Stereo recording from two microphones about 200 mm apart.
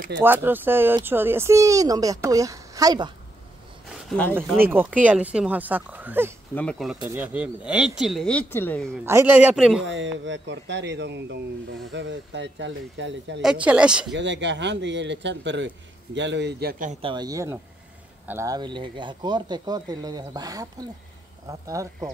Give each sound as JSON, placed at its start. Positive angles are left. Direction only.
{"t": 0.2, "sound": "speech", "side_deg": -10}
{"t": 3.9, "sound": "a sound", "side_deg": 5}
{"t": 4.6, "sound": "speech", "side_deg": -10}
{"t": 6.5, "sound": "speech", "side_deg": 5}
{"t": 9.0, "sound": "speech", "side_deg": -10}
{"t": 9.8, "sound": "speech", "side_deg": -65}
{"t": 13.4, "sound": "speech", "side_deg": -5}
{"t": 14.1, "sound": "a man's voice", "side_deg": -65}
{"t": 17.0, "sound": "speech", "side_deg": -20}